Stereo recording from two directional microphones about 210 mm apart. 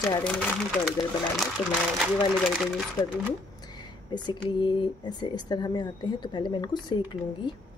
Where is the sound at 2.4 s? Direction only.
Centre (ahead or behind).